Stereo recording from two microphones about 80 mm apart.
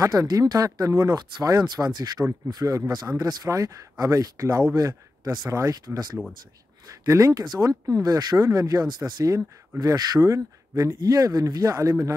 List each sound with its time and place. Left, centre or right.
0.0 s speech: right
2.5 s speech: right
5.5 s speech: right
6.9 s speech: right